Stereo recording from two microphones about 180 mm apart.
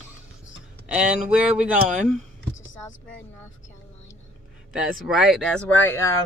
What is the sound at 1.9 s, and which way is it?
Speech, 40° right (ahead or behind).